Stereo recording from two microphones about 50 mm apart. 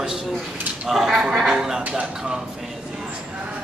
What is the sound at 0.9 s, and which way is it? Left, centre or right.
Speech, centre.